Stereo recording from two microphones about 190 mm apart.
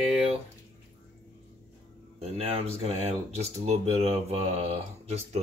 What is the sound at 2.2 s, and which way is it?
Speech, 30° right (ahead or behind).